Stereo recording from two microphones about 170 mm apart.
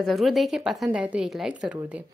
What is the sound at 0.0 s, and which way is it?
A woman's voice, centre (ahead or behind).